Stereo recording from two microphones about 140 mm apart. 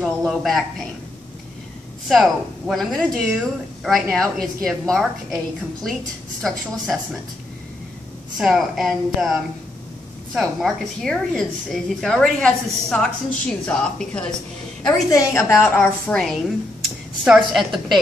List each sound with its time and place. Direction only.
0.0 s speech: centre (ahead or behind)
2.0 s a woman's voice: centre (ahead or behind)
8.4 s a woman's voice: centre (ahead or behind)
15.0 s a woman's voice: 20° left (ahead or behind)
15.7 s a woman's voice: 5° left (ahead or behind)